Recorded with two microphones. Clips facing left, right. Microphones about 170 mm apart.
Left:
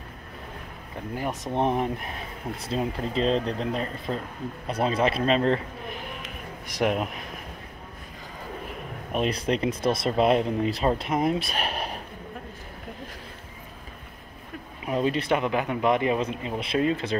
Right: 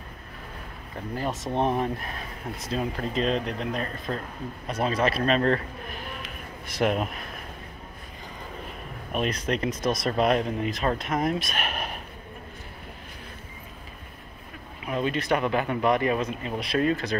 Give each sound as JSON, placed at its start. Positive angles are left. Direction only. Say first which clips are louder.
{"t": 1.1, "sound": "speech", "louder": "even", "side_deg": 15}
{"t": 9.1, "sound": "speech", "louder": "left 2 dB", "side_deg": 25}
{"t": 11.5, "sound": "a sound", "louder": "left 2 dB", "side_deg": 35}
{"t": 14.9, "sound": "speech", "louder": "left 2 dB", "side_deg": 30}
{"t": 15.3, "sound": "speech", "louder": "even", "side_deg": 15}